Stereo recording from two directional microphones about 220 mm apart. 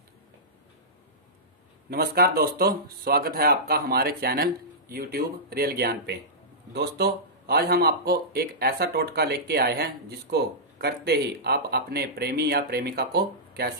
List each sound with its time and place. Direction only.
1.9 s speech: 45° right (ahead or behind)